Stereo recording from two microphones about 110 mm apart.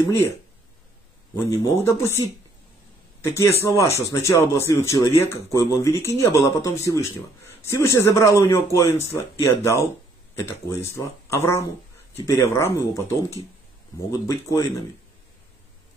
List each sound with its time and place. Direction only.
1.3 s speech: 25° left (ahead or behind)